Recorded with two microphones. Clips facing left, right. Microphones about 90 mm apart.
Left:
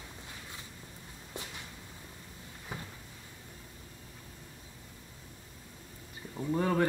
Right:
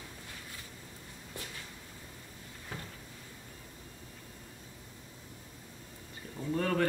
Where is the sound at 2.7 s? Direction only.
15° left (ahead or behind).